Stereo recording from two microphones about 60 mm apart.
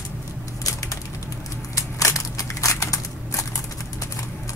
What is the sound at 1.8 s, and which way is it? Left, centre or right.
Crushing, left.